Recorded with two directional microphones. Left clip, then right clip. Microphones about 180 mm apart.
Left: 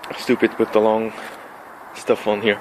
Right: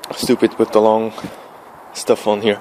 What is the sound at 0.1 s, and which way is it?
Speech, 25° right (ahead or behind).